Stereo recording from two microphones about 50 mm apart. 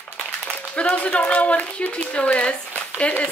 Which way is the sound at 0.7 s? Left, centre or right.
Left.